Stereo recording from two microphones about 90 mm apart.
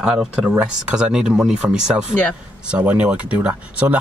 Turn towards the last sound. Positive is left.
turn(degrees=-15)  # may be behind; listen again after turning